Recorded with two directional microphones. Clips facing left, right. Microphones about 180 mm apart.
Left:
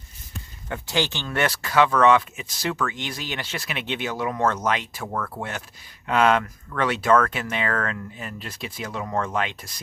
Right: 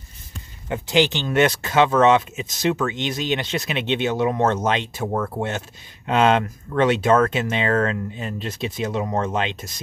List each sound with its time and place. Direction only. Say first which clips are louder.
0.7 s speech: right 7 dB; 20° right (ahead or behind)